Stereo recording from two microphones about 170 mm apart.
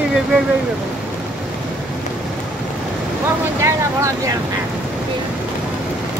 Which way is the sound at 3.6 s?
15° right (ahead or behind).